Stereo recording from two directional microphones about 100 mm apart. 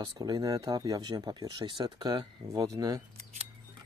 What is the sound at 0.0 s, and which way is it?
Speech, 40° right (ahead or behind).